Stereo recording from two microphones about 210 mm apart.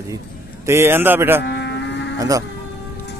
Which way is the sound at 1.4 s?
55° left (ahead or behind).